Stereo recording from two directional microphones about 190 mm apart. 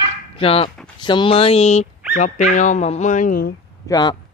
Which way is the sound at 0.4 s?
30° left (ahead or behind).